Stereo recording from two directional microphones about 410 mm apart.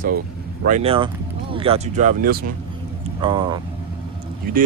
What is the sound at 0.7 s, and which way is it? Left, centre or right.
Speech, centre.